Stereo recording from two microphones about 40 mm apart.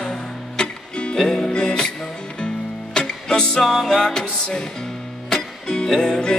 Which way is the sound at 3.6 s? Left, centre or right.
Centre.